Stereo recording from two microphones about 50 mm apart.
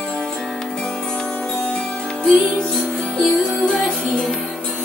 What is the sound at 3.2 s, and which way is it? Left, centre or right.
Music, centre.